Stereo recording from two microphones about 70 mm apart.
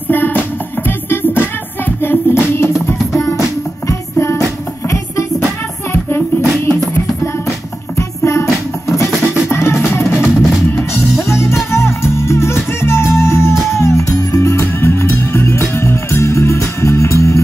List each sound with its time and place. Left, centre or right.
0.1 s music: left
3.2 s music: left
6.0 s music: left
8.2 s music: left
9.5 s music: left
10.3 s music: centre
10.7 s music: left